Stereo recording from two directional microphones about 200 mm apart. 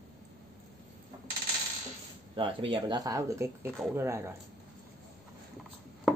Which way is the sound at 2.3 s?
25° right (ahead or behind).